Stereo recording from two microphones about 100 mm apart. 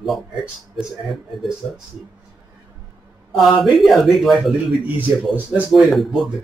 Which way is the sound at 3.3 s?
Centre (ahead or behind).